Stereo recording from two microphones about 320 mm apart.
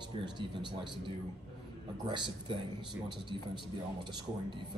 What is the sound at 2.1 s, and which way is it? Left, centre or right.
Speech, centre.